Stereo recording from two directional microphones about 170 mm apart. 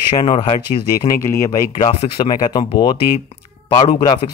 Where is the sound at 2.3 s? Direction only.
25° left (ahead or behind).